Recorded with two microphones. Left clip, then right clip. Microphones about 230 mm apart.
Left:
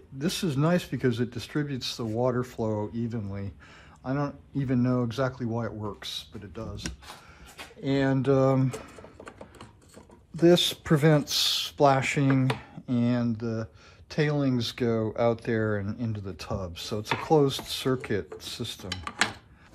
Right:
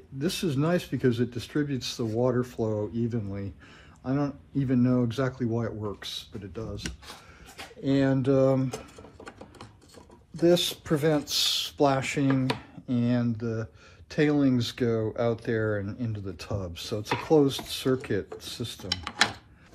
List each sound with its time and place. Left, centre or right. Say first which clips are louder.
0.2 s speech: even; left
7.8 s speech: right 1 dB; left
8.6 s music: left 1 dB; centre
10.4 s speech: left 2 dB; left